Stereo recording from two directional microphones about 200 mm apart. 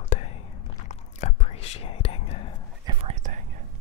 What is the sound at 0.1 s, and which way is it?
Whispering, 30° left (ahead or behind).